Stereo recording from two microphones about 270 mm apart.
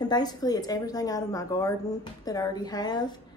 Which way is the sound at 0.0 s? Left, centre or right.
Centre.